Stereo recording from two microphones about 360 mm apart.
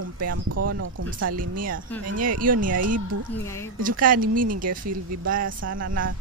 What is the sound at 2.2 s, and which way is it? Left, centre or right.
Speech, right.